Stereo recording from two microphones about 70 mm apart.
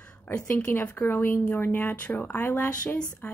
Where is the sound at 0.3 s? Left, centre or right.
Centre.